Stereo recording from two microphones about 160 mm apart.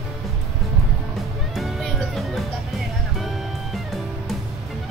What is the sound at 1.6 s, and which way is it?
Music, centre (ahead or behind).